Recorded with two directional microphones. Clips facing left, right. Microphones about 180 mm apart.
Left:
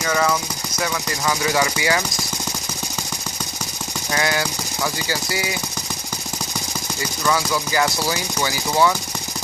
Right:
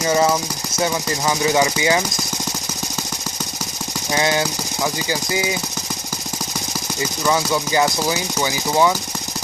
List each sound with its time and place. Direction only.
0.0 s speech: 25° right (ahead or behind)
4.1 s speech: 20° right (ahead or behind)
7.2 s speech: 20° right (ahead or behind)